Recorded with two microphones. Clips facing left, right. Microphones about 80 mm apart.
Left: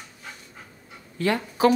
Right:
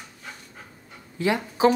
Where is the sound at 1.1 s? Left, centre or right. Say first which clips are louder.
Even; centre.